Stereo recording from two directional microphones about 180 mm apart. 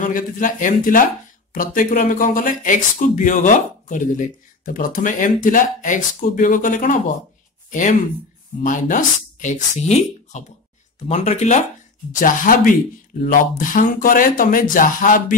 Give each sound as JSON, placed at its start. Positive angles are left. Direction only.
{"t": 0.0, "sound": "speech", "side_deg": 45}
{"t": 8.6, "sound": "speech", "side_deg": 45}